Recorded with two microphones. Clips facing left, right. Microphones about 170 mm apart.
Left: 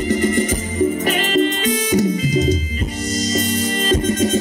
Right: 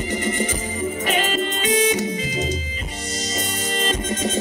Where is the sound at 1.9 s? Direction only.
45° left (ahead or behind).